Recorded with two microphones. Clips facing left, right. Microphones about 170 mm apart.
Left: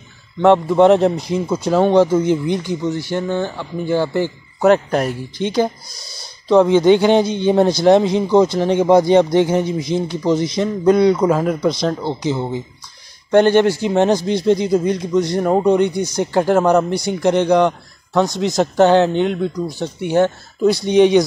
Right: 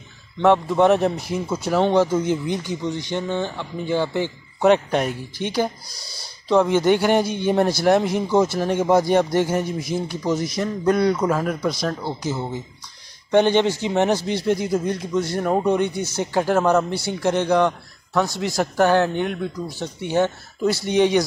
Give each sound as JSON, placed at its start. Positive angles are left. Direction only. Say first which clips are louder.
{"t": 0.4, "sound": "a man's voice", "louder": "left 5 dB", "side_deg": 15}
{"t": 5.9, "sound": "speech", "louder": "left 2 dB", "side_deg": -10}
{"t": 6.5, "sound": "a man's voice", "louder": "left 6 dB", "side_deg": 15}
{"t": 13.3, "sound": "a man's voice", "louder": "left 5 dB", "side_deg": 10}